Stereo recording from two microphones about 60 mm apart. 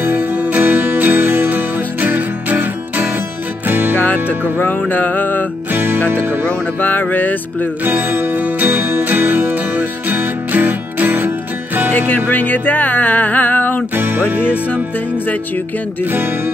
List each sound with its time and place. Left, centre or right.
0.0 s music: right
4.0 s music: left
5.7 s music: right
6.4 s a sound: left
7.8 s music: right
8.6 s music: right
12.3 s music: left
13.9 s music: right
14.4 s music: left
16.1 s speech: right